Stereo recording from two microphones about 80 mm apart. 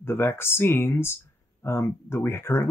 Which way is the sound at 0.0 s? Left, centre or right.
Left.